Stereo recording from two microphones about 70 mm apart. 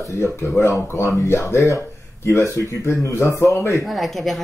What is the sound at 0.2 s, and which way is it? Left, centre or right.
Speech, left.